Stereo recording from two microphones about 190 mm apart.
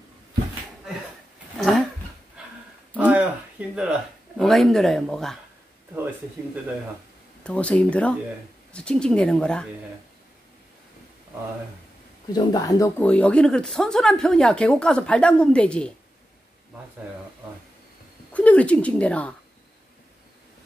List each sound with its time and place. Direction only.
1.6 s a sound: centre (ahead or behind)
3.0 s a sound: 5° right (ahead or behind)
3.7 s speech: 5° right (ahead or behind)
7.4 s speech: 5° left (ahead or behind)
12.3 s speech: 20° left (ahead or behind)
13.0 s speech: 5° left (ahead or behind)
18.3 s speech: 5° left (ahead or behind)